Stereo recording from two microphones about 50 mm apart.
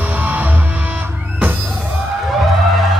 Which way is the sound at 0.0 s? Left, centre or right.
Right.